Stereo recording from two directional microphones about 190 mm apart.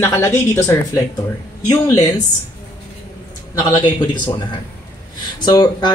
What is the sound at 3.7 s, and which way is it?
Speech, 20° left (ahead or behind).